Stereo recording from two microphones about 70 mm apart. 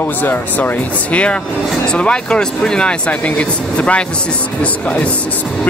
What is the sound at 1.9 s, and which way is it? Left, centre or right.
Speech, centre.